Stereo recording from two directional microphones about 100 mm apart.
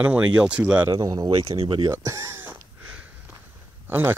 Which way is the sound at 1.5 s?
60° right (ahead or behind).